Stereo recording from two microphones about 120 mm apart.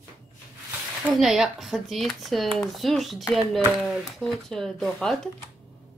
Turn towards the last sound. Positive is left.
turn(degrees=0)  # may be behind; listen again after turning